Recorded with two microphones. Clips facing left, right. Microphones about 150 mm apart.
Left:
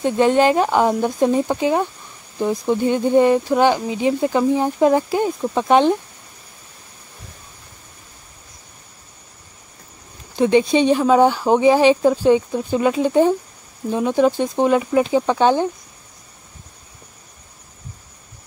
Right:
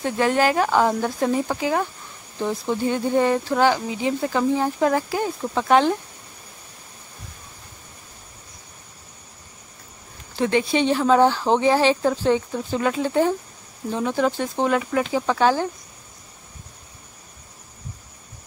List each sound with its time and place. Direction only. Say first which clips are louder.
0.0 s speech: left 5 dB; 20° left (ahead or behind)
10.3 s speech: left 6 dB; 20° left (ahead or behind)